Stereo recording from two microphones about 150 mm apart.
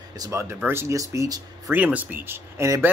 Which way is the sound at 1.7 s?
10° right (ahead or behind).